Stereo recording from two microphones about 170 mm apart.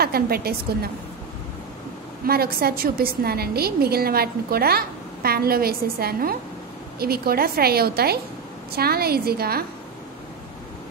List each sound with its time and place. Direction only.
0.0 s a woman's voice: 65° right (ahead or behind)
2.2 s a woman's voice: 65° right (ahead or behind)